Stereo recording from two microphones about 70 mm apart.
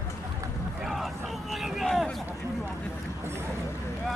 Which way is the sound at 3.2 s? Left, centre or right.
Right.